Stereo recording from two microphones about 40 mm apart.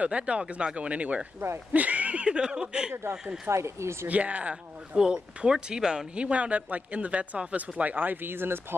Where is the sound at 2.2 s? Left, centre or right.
Right.